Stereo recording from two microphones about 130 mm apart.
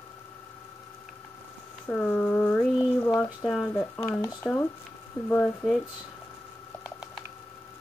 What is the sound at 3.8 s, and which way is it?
Speech, 15° left (ahead or behind).